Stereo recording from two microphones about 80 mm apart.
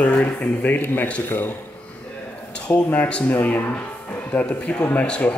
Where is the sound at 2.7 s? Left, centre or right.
Centre.